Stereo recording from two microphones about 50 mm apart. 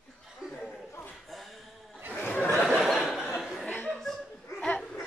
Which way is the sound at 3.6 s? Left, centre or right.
Left.